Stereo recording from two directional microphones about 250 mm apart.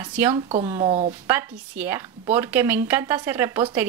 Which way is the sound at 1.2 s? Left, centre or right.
Centre.